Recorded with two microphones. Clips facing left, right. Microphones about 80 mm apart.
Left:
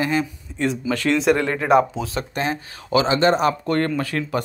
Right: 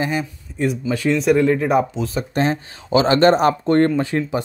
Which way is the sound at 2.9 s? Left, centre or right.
Right.